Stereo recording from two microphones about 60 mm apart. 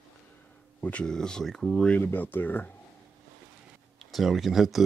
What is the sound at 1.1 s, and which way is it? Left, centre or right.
Speech, centre.